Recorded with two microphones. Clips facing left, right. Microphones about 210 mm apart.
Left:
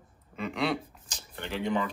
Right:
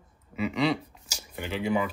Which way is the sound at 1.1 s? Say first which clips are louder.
Right 2 dB; 10° right (ahead or behind).